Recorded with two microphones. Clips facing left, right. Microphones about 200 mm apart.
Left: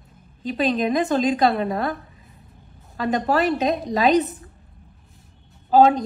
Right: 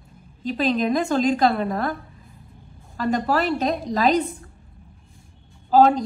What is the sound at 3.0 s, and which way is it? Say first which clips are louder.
A woman's voice: left 1 dB; centre (ahead or behind).